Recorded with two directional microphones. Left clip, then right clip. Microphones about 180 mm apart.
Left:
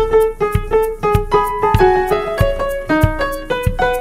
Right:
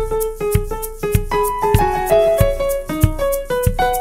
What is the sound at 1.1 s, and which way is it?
Music, centre (ahead or behind).